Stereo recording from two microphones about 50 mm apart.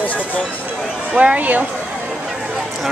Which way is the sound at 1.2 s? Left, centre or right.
Right.